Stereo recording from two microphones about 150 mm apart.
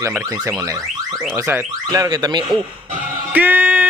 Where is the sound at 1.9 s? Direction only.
30° right (ahead or behind).